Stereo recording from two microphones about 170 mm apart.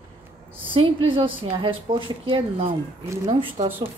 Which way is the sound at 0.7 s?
30° right (ahead or behind).